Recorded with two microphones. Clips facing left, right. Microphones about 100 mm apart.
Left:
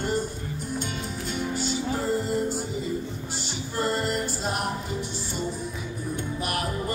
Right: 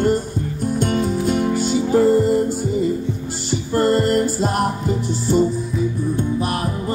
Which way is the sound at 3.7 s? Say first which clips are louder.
Right 10 dB; 60° right (ahead or behind).